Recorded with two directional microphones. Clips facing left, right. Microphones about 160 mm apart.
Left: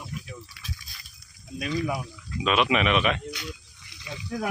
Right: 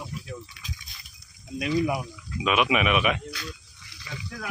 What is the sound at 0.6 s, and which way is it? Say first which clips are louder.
Liquid: even; 15° right (ahead or behind).